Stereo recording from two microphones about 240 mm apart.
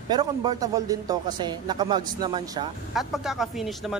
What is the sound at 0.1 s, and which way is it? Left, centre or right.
A man's voice, centre.